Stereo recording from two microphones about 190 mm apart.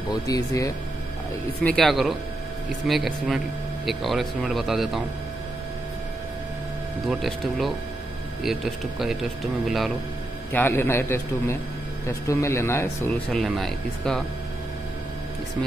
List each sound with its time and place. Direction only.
0.1 s speech: 20° left (ahead or behind)
1.6 s speech: 5° left (ahead or behind)
7.1 s speech: centre (ahead or behind)
10.5 s speech: 10° left (ahead or behind)
13.4 s speech: centre (ahead or behind)